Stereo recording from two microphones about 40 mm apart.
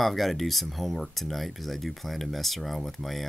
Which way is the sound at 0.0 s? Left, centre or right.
Centre.